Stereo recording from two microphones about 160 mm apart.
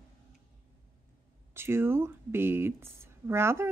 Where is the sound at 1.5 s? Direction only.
15° right (ahead or behind).